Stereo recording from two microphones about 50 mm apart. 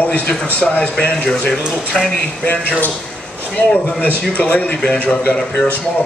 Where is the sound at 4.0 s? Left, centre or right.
Left.